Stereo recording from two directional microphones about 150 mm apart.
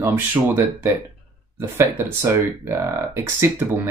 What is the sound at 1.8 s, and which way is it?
Speech, 15° right (ahead or behind).